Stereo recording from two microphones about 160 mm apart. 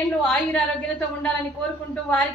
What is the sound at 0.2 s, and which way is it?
Speech, 5° left (ahead or behind).